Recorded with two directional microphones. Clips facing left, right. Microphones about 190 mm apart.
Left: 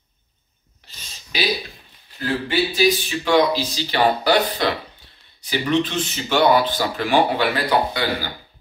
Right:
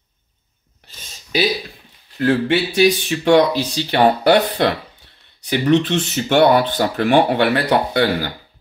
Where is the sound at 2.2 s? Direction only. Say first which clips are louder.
Right 5 dB; 75° right (ahead or behind); by 4.7 s 60° right (ahead or behind).